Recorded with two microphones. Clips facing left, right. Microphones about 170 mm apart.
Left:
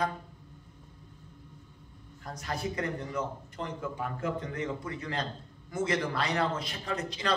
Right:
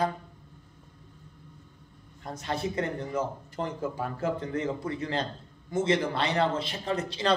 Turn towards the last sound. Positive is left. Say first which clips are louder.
# right 5 dB
turn(degrees=-30)  # may be behind; listen again after turning